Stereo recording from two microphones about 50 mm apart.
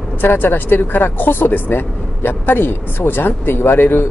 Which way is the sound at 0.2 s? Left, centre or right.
Left.